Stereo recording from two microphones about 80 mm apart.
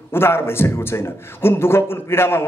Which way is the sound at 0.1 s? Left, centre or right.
Left.